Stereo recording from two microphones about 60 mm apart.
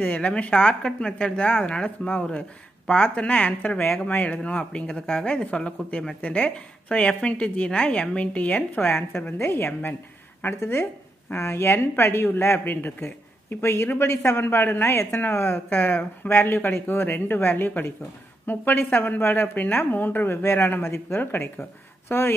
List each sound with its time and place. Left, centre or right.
0.0 s a woman's voice: left
8.8 s a woman's voice: left
13.6 s a woman's voice: left